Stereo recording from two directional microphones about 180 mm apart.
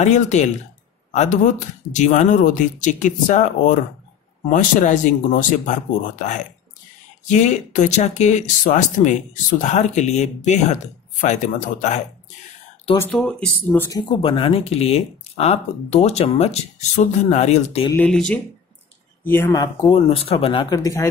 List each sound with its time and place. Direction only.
0.0 s speech: 40° left (ahead or behind)
13.2 s speech: 5° left (ahead or behind)
14.2 s speech: 30° left (ahead or behind)
17.9 s speech: 5° left (ahead or behind); by 20.6 s 30° left (ahead or behind)
20.7 s speech: 15° left (ahead or behind)